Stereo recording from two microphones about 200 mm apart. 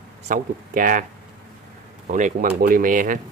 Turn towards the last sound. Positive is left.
turn(degrees=-40)  # may be behind; listen again after turning